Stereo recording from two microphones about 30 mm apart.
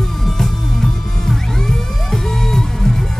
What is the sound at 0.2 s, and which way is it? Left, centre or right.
Music, centre.